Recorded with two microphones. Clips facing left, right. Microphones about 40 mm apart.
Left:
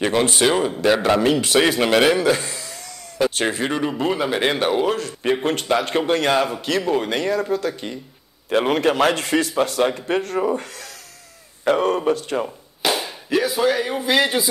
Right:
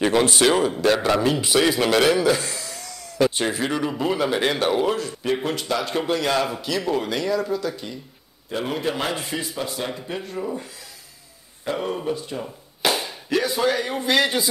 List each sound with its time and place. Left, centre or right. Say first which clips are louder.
0.4 s speech: even; centre
1.3 s a man's voice: left 3 dB; left
1.6 s speech: left 1 dB; left
4.9 s speech: left 3 dB; left
6.3 s speech: left 3 dB; centre
7.1 s speech: left 2 dB; left
8.5 s a man's voice: left 7 dB; left
10.4 s speech: left 7 dB; left
12.8 s speech: left 1 dB; centre